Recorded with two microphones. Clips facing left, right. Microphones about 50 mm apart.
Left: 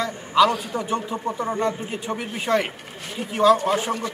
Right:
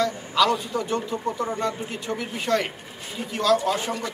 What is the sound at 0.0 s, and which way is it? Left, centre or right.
A man's voice, centre.